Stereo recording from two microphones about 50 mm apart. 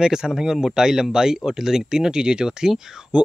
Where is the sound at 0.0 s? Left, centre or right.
Centre.